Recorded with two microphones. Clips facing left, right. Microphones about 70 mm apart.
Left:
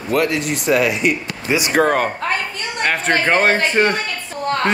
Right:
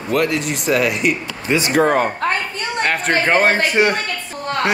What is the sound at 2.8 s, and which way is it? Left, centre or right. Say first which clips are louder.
Speech: left 1 dB; centre.